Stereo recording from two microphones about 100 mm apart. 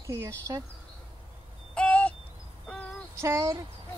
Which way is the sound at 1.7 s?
10° left (ahead or behind).